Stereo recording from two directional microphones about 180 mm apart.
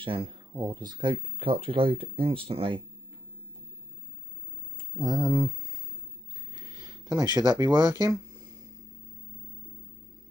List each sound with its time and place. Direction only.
0.0 s speech: 30° right (ahead or behind)
4.9 s speech: 20° right (ahead or behind)
6.5 s speech: 20° right (ahead or behind)